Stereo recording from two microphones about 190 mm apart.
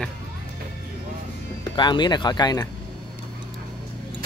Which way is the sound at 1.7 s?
25° left (ahead or behind).